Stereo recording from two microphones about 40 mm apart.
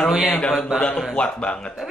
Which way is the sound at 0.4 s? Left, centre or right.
Centre.